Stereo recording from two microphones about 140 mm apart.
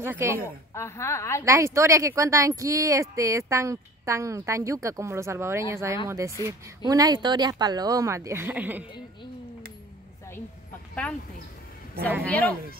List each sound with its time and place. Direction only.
0.0 s a woman's voice: 15° right (ahead or behind)
0.7 s a woman's voice: 20° left (ahead or behind)
1.4 s speech: 20° right (ahead or behind)
12.3 s speech: 10° left (ahead or behind)